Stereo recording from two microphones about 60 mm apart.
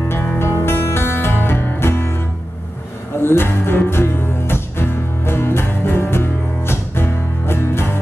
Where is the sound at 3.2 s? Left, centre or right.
Left.